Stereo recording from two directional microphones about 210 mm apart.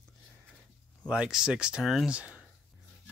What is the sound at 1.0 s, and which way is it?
Speech, 5° right (ahead or behind).